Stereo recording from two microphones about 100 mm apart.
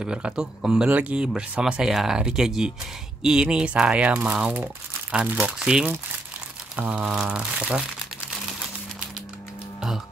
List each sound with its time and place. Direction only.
0.0 s speech: 10° right (ahead or behind)